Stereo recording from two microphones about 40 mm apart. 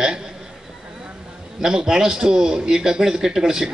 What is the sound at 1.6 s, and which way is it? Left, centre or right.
A man's voice, centre.